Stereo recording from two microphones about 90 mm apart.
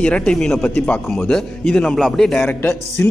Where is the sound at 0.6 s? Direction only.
15° left (ahead or behind).